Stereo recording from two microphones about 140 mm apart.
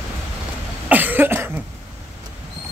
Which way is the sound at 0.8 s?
15° right (ahead or behind).